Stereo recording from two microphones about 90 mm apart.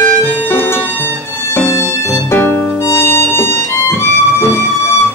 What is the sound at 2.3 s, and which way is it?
Music, 25° left (ahead or behind).